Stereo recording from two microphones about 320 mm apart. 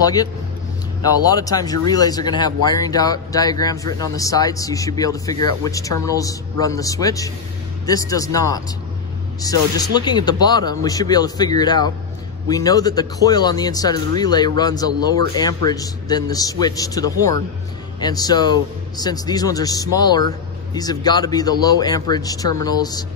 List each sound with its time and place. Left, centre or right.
0.0 s speech: centre